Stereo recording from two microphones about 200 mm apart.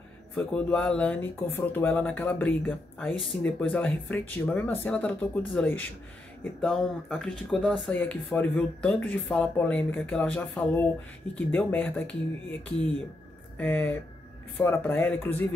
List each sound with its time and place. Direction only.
0.3 s speech: 5° left (ahead or behind)